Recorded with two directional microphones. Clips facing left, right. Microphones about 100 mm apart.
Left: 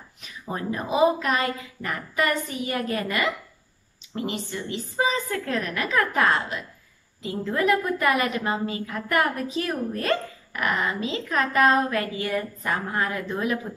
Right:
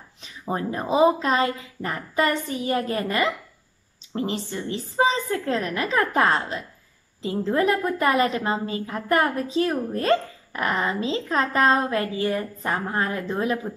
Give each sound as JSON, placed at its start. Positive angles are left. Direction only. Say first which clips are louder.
{"t": 0.2, "sound": "a woman's voice", "louder": "right 4 dB", "side_deg": -30}